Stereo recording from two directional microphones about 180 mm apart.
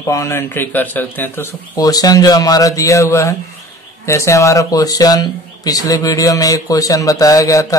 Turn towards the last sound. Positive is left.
turn(degrees=20)  # may be behind; listen again after turning